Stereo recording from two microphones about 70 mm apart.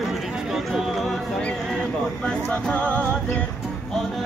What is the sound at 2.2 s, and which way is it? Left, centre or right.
Speech, centre.